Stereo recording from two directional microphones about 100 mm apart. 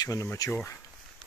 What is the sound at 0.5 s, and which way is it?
Speech, 25° left (ahead or behind).